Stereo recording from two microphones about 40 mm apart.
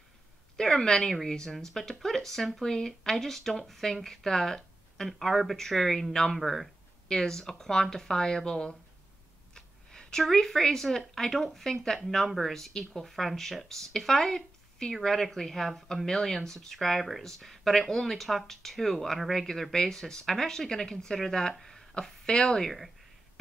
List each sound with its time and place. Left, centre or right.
0.6 s speech: centre
7.1 s speech: centre
9.5 s a sound: centre
10.4 s speech: centre
21.5 s a sound: centre
22.2 s speech: centre